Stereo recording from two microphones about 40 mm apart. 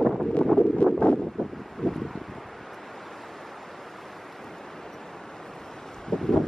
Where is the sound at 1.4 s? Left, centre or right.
Centre.